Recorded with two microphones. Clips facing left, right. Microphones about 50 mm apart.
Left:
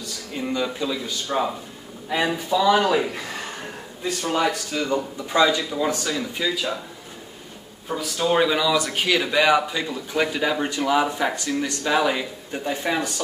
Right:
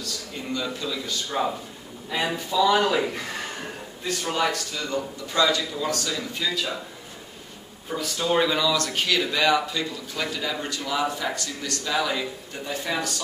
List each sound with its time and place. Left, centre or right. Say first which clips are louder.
0.0 s a man's voice: left 4 dB; centre
4.4 s speech: left 3 dB; left
7.9 s speech: left 2 dB; centre; by 13.1 s left